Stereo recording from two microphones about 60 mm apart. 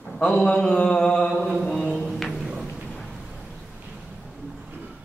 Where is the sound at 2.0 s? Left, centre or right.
Centre.